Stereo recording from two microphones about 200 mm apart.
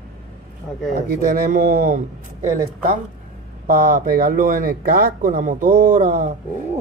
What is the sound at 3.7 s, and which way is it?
Speech, 45° right (ahead or behind).